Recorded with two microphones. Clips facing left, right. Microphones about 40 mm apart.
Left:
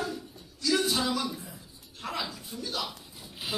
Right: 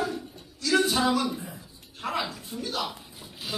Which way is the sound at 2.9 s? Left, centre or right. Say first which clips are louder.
Right 3 dB; centre.